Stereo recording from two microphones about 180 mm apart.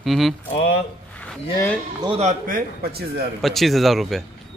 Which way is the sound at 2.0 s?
30° right (ahead or behind).